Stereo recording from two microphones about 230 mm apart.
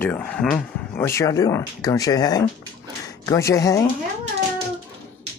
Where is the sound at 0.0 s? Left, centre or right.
Centre.